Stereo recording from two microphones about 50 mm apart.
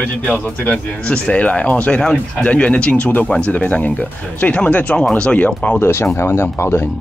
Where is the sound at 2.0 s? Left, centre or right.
Centre.